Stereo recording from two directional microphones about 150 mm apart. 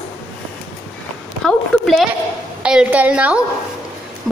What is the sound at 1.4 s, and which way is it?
A woman's voice, centre (ahead or behind).